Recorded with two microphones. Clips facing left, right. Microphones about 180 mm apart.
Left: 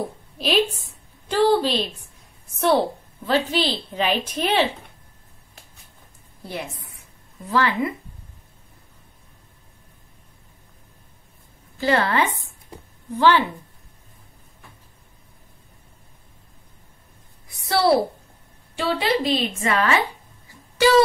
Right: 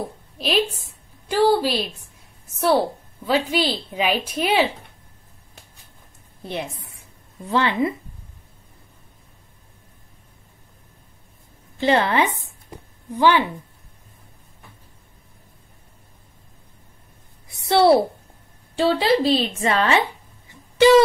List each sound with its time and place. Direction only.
0.4 s a woman's voice: centre (ahead or behind)
1.3 s a woman's voice: 10° right (ahead or behind)
6.4 s a woman's voice: 20° right (ahead or behind)
11.8 s a woman's voice: 20° right (ahead or behind)
17.5 s a sound: 25° right (ahead or behind)
18.8 s a woman's voice: 30° right (ahead or behind)
20.4 s a sound: 20° right (ahead or behind)